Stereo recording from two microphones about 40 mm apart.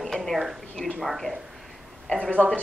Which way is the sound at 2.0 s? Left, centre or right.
Centre.